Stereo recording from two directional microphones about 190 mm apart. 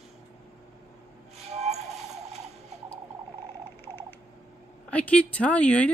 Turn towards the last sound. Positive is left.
turn(degrees=5)  # may be behind; listen again after turning